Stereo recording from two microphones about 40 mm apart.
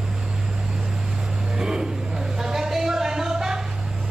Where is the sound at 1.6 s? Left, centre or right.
Centre.